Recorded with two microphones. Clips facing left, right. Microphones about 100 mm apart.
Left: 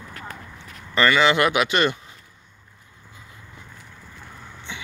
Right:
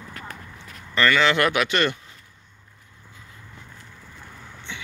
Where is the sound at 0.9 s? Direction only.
15° left (ahead or behind).